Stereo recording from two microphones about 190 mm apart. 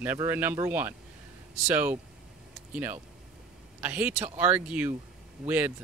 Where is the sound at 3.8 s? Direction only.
10° right (ahead or behind).